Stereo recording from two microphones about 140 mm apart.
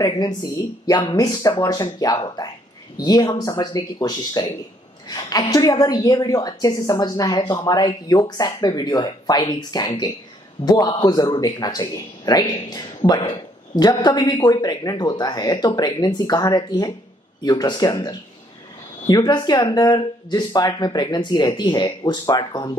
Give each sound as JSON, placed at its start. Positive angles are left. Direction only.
{"t": 0.0, "sound": "a woman's voice", "side_deg": 30}